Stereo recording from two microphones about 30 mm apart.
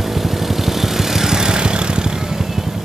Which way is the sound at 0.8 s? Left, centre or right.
Centre.